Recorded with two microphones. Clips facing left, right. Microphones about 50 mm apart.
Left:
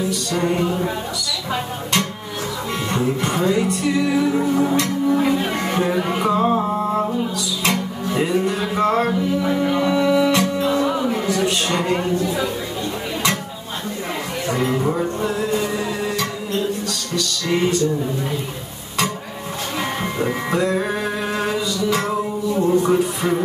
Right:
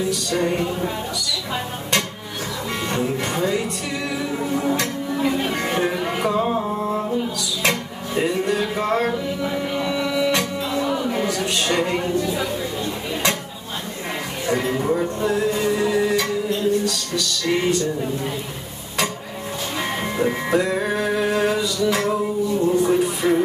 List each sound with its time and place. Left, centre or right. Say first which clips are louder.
2.9 s speech: left 3 dB; left
5.6 s music: left 1 dB; centre
6.1 s music: left 4 dB; centre
8.5 s music: left 2 dB; centre
20.2 s music: even; centre